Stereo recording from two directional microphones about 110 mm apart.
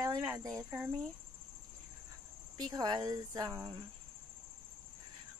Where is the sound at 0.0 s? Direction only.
30° right (ahead or behind).